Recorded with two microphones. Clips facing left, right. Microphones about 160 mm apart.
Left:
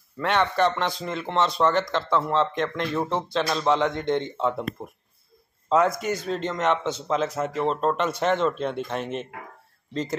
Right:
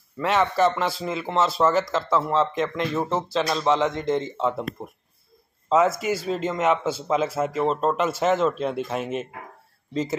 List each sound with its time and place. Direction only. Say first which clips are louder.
0.2 s a man's voice: right 2 dB; centre (ahead or behind)
5.7 s a man's voice: right 1 dB; centre (ahead or behind)